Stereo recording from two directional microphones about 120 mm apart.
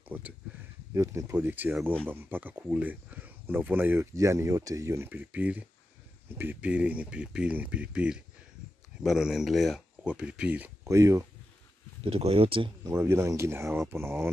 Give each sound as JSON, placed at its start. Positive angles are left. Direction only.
{"t": 0.1, "sound": "speech", "side_deg": -15}
{"t": 0.9, "sound": "speech", "side_deg": -25}
{"t": 10.8, "sound": "speech", "side_deg": -25}
{"t": 12.0, "sound": "speech", "side_deg": -55}
{"t": 12.8, "sound": "speech", "side_deg": -25}